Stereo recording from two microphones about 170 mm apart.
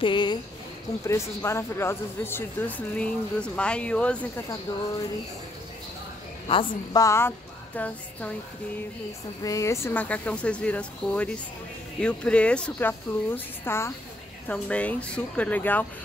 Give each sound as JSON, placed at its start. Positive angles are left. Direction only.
{"t": 0.0, "sound": "a woman's voice", "side_deg": 25}
{"t": 1.0, "sound": "speech", "side_deg": 15}
{"t": 6.5, "sound": "a woman's voice", "side_deg": 30}
{"t": 7.0, "sound": "speech", "side_deg": 15}
{"t": 9.4, "sound": "speech", "side_deg": 20}